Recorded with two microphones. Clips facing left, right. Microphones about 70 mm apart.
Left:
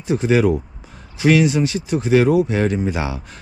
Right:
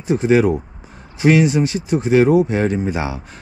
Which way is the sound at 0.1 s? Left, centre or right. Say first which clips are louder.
Right 2 dB; right.